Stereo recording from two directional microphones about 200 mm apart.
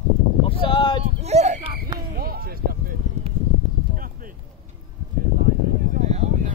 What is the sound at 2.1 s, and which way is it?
Speech, 50° right (ahead or behind).